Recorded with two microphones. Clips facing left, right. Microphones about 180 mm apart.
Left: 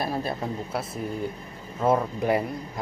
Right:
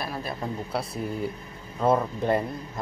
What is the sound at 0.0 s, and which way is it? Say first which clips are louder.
Speech: left 4 dB; 30° left (ahead or behind).